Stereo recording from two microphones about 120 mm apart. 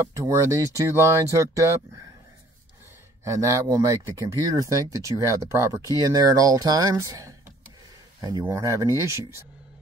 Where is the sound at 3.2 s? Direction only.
25° right (ahead or behind).